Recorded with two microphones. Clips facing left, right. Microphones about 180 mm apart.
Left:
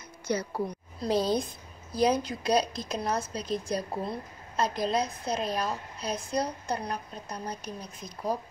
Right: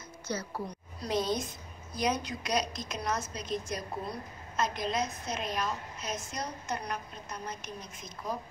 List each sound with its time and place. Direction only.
0.3 s a woman's voice: 15° left (ahead or behind)
1.0 s a woman's voice: 35° left (ahead or behind)